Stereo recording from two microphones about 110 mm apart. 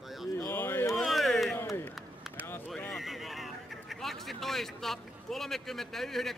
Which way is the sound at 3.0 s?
Centre (ahead or behind).